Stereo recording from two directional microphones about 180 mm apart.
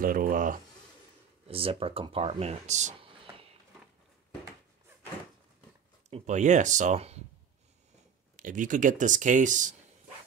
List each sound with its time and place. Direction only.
0.0 s speech: 50° right (ahead or behind)
1.5 s speech: 30° right (ahead or behind)
6.0 s speech: 40° right (ahead or behind)
8.4 s speech: 45° right (ahead or behind)